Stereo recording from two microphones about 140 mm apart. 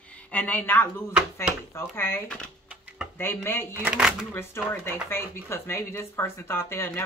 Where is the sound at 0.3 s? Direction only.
10° left (ahead or behind).